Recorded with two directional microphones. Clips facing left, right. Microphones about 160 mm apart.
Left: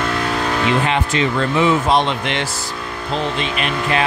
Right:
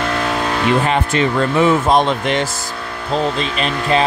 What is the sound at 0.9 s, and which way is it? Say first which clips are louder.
Speech: right 2 dB; 45° right (ahead or behind).